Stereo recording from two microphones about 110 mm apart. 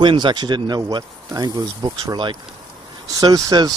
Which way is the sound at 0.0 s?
45° right (ahead or behind).